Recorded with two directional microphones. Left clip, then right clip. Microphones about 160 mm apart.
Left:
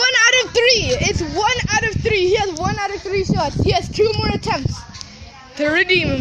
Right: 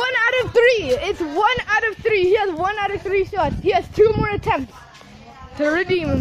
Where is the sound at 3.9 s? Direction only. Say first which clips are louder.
Right 4 dB; 20° right (ahead or behind).